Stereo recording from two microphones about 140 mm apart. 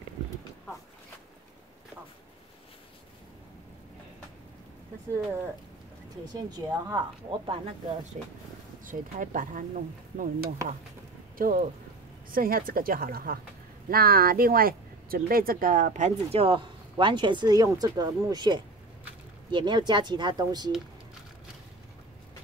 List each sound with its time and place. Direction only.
6.3 s speech: 30° right (ahead or behind)
8.2 s speech: 55° right (ahead or behind)
8.8 s speech: 75° right (ahead or behind)
11.3 s speech: 85° right; by 20.7 s 30° right (ahead or behind)